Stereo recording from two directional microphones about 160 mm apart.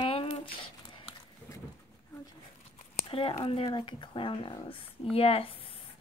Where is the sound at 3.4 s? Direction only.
35° left (ahead or behind).